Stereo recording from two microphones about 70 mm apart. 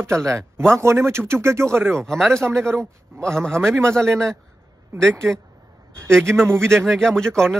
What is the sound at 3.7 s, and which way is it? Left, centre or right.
Speech, right.